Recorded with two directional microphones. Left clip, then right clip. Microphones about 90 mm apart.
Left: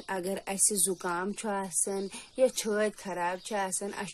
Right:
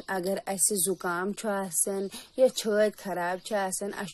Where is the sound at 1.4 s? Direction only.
35° right (ahead or behind).